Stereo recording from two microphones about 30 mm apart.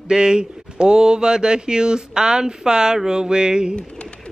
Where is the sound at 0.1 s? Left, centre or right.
Right.